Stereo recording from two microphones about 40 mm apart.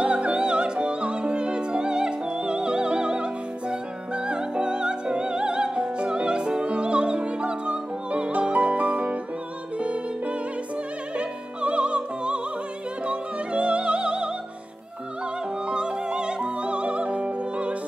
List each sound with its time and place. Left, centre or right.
0.0 s music: right
15.6 s music: right